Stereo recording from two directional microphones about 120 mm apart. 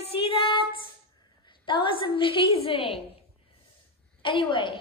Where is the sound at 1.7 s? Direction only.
45° left (ahead or behind).